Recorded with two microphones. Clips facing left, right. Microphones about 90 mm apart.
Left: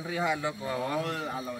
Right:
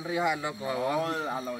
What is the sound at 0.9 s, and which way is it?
Speech, 25° right (ahead or behind).